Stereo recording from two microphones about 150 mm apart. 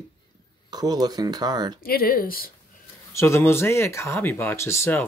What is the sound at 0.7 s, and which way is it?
Speech, 25° right (ahead or behind).